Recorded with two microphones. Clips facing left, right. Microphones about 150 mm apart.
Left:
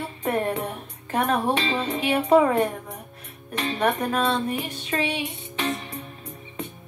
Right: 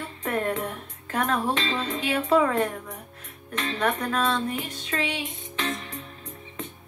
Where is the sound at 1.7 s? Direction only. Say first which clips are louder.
Left 3 dB; 20° left (ahead or behind).